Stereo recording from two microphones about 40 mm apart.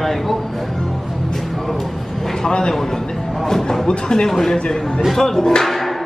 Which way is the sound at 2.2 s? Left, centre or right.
Centre.